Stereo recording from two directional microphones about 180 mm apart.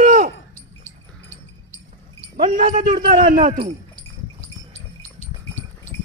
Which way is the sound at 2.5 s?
50° right (ahead or behind).